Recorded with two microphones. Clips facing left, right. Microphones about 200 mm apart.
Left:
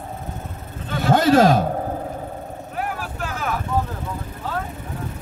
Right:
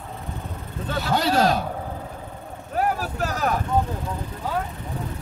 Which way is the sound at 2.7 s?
40° right (ahead or behind).